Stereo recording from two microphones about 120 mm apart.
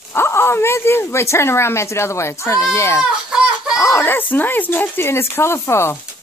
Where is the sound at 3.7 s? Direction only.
20° left (ahead or behind).